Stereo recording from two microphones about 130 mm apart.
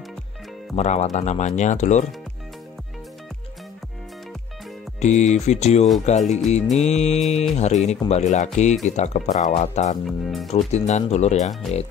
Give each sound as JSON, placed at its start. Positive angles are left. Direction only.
{"t": 0.7, "sound": "music", "side_deg": 60}
{"t": 5.0, "sound": "music", "side_deg": 65}
{"t": 10.0, "sound": "speech", "side_deg": 0}
{"t": 10.5, "sound": "music", "side_deg": 60}